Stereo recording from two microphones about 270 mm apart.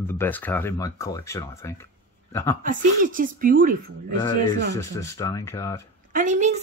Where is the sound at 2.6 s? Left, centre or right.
Right.